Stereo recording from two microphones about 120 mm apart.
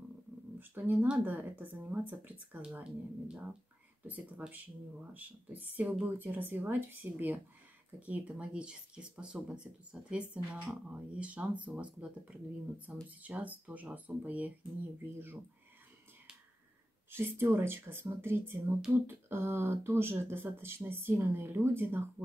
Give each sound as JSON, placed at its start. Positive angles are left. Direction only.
{"t": 0.6, "sound": "speech", "side_deg": -15}
{"t": 17.1, "sound": "speech", "side_deg": -20}